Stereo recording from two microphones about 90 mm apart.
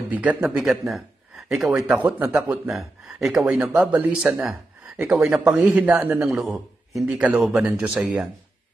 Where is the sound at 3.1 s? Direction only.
5° right (ahead or behind).